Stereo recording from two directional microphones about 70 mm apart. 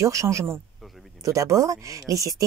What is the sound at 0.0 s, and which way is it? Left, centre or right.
A woman's voice, right.